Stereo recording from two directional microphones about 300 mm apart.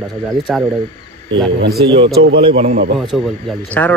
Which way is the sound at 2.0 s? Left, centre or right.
Right.